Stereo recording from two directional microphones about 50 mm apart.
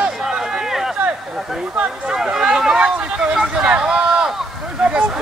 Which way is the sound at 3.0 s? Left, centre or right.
Right.